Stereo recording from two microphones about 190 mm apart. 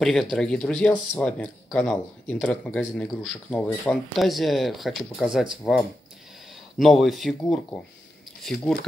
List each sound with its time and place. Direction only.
0.0 s speech: centre (ahead or behind)